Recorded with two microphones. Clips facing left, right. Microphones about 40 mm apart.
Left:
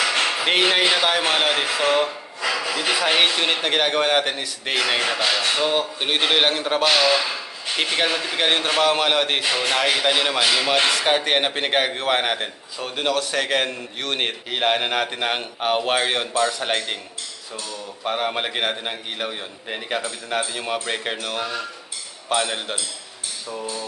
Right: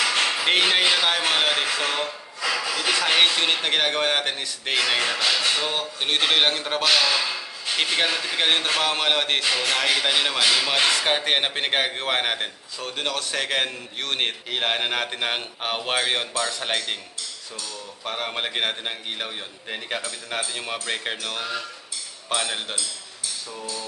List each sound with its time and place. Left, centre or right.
0.0 s speech: centre
3.1 s a man's voice: centre
6.8 s a man's voice: centre
7.7 s a man's voice: centre
9.4 s a man's voice: centre
18.0 s a man's voice: centre
23.5 s hammer: left